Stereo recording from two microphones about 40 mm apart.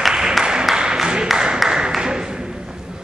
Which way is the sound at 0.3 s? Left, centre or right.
Centre.